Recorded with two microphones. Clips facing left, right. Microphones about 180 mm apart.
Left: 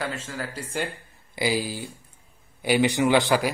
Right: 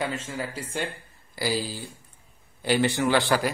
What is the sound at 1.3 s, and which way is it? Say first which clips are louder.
A man's voice: left 2 dB; 15° left (ahead or behind).